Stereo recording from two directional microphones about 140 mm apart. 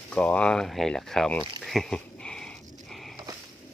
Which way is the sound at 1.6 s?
Centre (ahead or behind).